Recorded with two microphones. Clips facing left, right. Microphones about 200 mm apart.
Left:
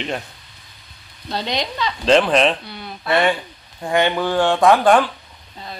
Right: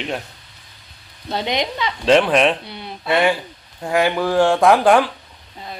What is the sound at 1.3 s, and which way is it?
Frying, 20° right (ahead or behind).